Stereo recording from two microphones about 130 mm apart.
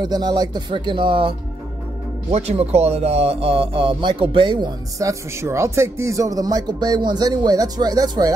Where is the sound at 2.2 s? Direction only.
55° right (ahead or behind).